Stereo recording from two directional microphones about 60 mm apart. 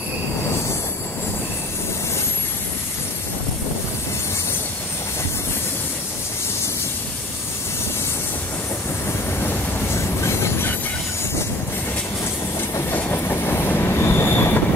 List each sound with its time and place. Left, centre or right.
9.9 s train: left
12.9 s train: left